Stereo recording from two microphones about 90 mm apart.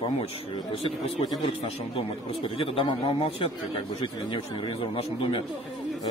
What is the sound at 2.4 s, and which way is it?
Speech, 75° left (ahead or behind).